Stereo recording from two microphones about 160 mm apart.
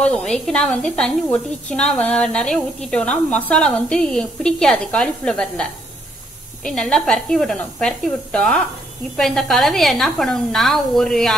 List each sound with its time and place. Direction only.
0.0 s speech: 5° left (ahead or behind)